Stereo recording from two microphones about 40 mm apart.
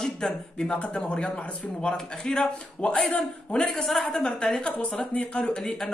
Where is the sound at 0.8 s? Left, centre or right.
Left.